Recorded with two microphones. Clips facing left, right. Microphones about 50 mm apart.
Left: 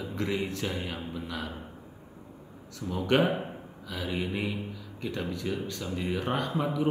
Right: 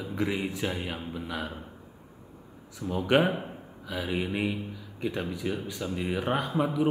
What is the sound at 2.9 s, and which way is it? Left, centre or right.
Speech, centre.